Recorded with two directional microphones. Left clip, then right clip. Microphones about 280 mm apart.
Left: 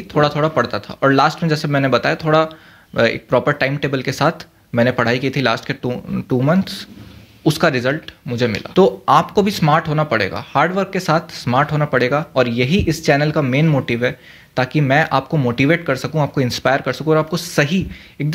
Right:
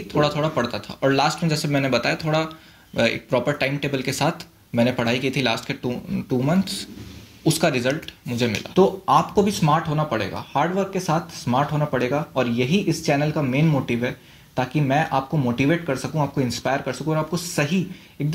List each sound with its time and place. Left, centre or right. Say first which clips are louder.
0.1 s speech: left 5 dB; left